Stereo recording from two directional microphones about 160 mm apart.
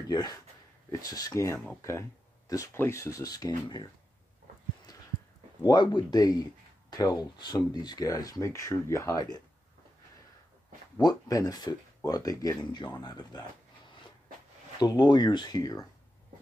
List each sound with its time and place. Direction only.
0.1 s speech: 25° left (ahead or behind)
5.6 s speech: 25° left (ahead or behind)
11.0 s speech: 25° left (ahead or behind)
14.8 s speech: 25° left (ahead or behind)